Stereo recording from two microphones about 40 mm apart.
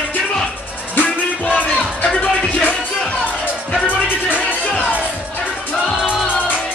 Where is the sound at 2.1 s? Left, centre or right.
Left.